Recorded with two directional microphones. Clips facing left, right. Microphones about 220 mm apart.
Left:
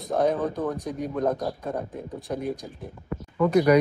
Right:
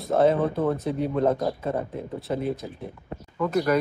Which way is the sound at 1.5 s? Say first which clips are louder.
Right 3 dB; 5° right (ahead or behind).